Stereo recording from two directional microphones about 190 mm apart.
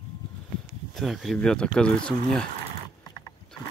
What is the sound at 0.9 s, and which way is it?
Speech, centre (ahead or behind).